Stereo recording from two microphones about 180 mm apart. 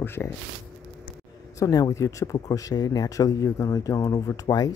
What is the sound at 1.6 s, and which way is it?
Speech, 20° left (ahead or behind).